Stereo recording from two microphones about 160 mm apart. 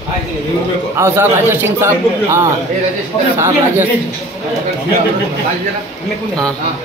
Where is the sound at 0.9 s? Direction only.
15° right (ahead or behind).